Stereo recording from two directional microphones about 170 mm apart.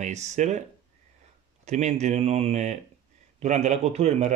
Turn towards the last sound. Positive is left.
turn(degrees=-40)  # may be behind; listen again after turning